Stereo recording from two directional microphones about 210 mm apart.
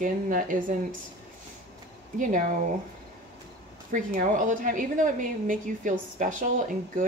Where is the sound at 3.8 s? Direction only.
40° right (ahead or behind).